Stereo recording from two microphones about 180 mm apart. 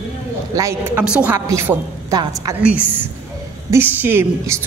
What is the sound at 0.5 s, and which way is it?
A woman's voice, 15° right (ahead or behind).